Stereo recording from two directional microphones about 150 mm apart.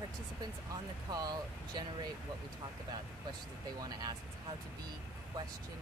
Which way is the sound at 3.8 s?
25° right (ahead or behind).